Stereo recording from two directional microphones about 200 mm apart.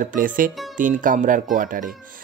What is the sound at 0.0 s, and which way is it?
Speech, 45° right (ahead or behind).